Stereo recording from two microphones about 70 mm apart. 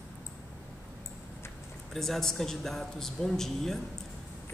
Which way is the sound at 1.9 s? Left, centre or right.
Centre.